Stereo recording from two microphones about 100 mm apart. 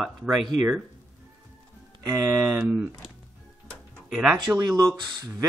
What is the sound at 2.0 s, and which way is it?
Speech, 35° right (ahead or behind).